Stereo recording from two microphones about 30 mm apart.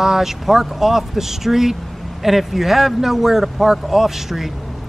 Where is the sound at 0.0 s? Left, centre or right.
Centre.